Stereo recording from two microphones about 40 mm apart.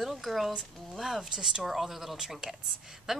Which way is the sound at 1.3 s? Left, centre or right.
Centre.